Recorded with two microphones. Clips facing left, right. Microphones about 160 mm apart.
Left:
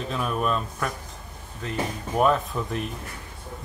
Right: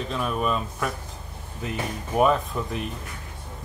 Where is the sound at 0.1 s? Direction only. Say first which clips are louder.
Even; centre (ahead or behind).